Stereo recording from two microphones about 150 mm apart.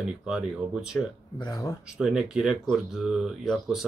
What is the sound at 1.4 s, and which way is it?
Speech, 25° left (ahead or behind).